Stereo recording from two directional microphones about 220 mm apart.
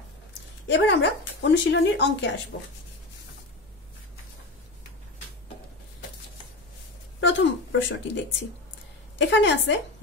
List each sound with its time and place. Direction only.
0.7 s speech: 50° left (ahead or behind)
7.2 s a woman's voice: 55° left (ahead or behind)